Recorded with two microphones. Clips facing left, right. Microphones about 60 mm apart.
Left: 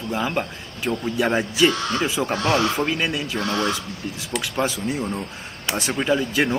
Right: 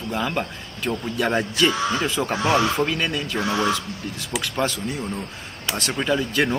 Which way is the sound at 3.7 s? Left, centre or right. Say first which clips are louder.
Right 2 dB; centre.